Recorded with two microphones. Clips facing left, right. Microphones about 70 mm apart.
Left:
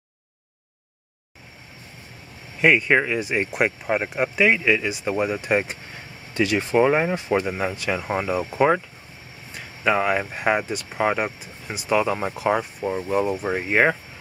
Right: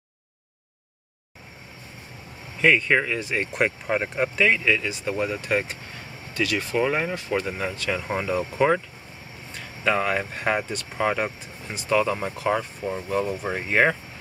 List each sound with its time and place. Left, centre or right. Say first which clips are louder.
2.6 s speech: left 2 dB; centre